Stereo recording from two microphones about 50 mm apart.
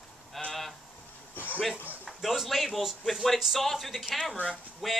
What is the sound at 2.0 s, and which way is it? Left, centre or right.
Speech, centre.